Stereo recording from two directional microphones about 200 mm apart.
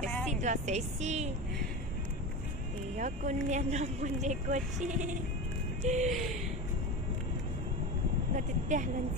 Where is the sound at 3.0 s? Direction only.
35° right (ahead or behind).